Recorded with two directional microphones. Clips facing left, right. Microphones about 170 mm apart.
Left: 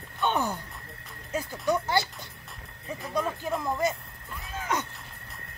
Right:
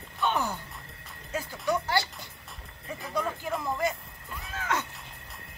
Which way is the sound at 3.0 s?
Centre (ahead or behind).